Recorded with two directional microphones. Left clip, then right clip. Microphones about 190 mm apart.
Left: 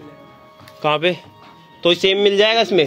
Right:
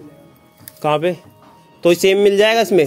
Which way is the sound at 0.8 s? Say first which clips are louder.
Even; 20° right (ahead or behind).